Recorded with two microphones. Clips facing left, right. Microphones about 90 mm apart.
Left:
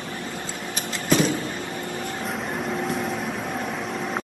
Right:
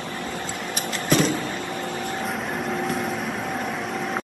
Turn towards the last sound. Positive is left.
turn(degrees=0)  # may be behind; listen again after turning